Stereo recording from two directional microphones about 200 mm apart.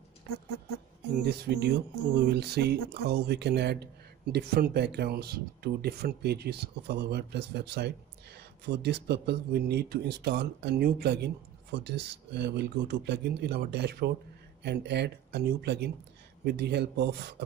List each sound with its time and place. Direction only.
1.2 s speech: 55° right (ahead or behind)